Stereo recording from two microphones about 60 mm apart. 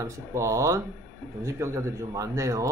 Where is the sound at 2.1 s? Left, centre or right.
Right.